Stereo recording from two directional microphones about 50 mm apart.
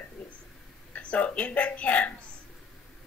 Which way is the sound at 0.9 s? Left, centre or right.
Left.